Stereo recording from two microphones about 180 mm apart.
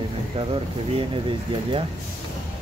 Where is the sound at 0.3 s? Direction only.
30° right (ahead or behind).